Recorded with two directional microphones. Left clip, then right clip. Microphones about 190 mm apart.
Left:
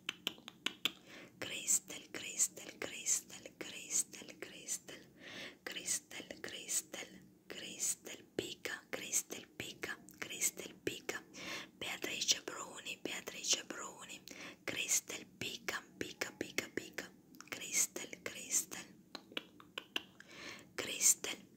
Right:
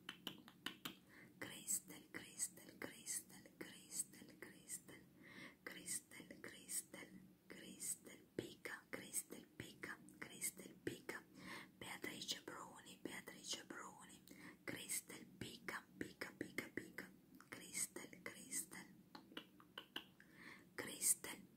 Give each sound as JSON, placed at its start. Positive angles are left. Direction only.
{"t": 0.0, "sound": "finger snapping", "side_deg": -25}
{"t": 1.4, "sound": "whispering", "side_deg": -20}